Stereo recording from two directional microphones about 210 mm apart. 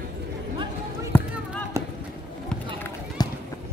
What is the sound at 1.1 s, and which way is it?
Basketball bounce, 10° left (ahead or behind).